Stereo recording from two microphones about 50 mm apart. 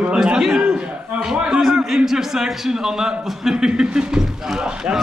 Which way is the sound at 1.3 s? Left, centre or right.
Centre.